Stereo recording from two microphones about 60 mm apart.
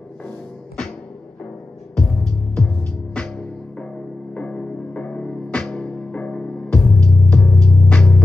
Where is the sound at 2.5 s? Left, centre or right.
Centre.